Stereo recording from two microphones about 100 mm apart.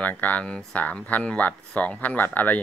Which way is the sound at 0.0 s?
15° left (ahead or behind).